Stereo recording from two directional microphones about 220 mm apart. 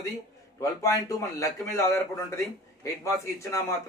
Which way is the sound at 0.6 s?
15° left (ahead or behind).